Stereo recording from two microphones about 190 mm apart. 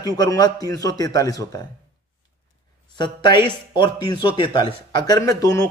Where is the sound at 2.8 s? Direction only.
25° left (ahead or behind).